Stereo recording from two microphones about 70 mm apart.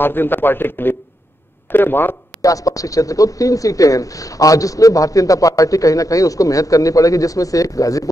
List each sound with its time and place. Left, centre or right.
0.0 s a man's voice: left
2.4 s speech: left